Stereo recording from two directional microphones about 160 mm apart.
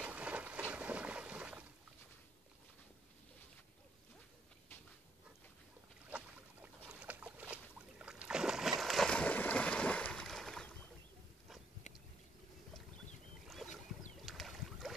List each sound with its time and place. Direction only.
0.0 s a sound: 10° right (ahead or behind)
6.0 s boat: 10° right (ahead or behind)
11.9 s boat: 50° left (ahead or behind)
13.6 s boat: centre (ahead or behind)